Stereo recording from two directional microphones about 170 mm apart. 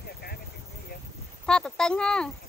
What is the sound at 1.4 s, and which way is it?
Speech, 5° left (ahead or behind).